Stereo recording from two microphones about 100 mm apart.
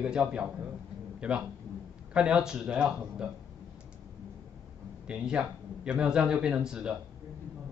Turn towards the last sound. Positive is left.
turn(degrees=-5)  # may be behind; listen again after turning